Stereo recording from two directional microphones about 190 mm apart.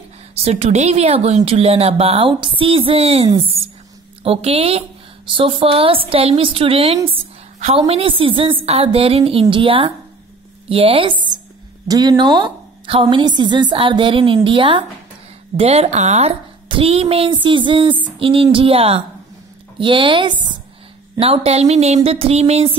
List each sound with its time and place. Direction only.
0.3 s a woman's voice: 30° right (ahead or behind)